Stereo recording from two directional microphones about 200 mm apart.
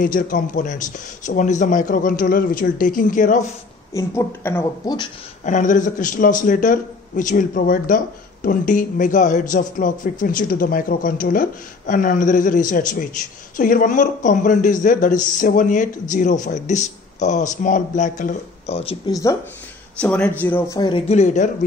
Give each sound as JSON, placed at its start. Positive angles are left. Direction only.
{"t": 0.0, "sound": "a man's voice", "side_deg": 40}
{"t": 3.9, "sound": "a woman's voice", "side_deg": 15}
{"t": 5.4, "sound": "a man's voice", "side_deg": 40}
{"t": 20.0, "sound": "a woman's voice", "side_deg": 5}
{"t": 20.7, "sound": "a man's voice", "side_deg": 25}